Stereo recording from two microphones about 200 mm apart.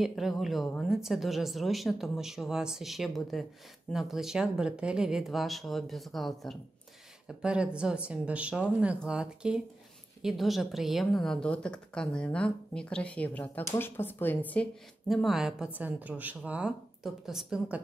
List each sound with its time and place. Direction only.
0.0 s a woman's voice: centre (ahead or behind)